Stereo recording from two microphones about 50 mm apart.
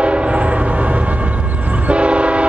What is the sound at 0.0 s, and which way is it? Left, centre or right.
Train horn, right.